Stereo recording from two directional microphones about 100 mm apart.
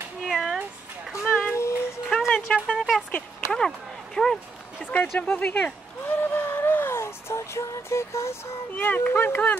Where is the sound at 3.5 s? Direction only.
5° left (ahead or behind).